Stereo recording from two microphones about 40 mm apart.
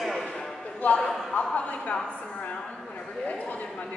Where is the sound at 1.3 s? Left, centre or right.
Left.